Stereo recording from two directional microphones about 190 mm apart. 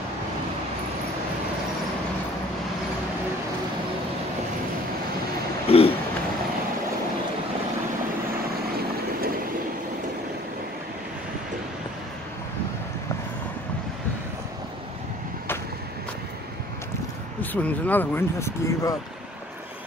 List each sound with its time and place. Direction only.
5.7 s vehicle: 30° left (ahead or behind)
17.4 s speech: 10° left (ahead or behind)